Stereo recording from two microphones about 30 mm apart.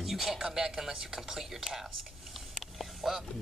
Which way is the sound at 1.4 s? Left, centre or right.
Centre.